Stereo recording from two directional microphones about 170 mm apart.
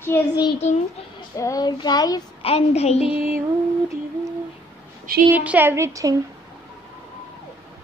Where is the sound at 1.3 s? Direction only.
20° left (ahead or behind).